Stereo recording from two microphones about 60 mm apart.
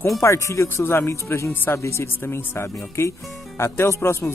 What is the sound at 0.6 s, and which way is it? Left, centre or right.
Speech, left.